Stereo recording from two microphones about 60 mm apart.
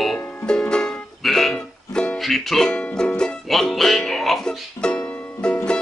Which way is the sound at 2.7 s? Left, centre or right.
Centre.